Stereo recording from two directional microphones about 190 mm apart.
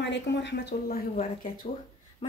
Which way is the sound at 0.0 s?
65° left (ahead or behind).